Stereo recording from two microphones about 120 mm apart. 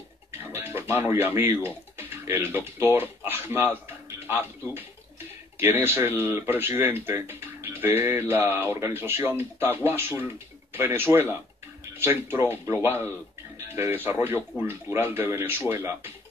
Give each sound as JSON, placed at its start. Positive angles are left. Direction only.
{"t": 0.3, "sound": "speech", "side_deg": -20}